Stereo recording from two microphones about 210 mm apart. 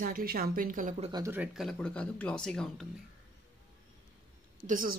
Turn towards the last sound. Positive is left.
turn(degrees=-40)  # may be behind; listen again after turning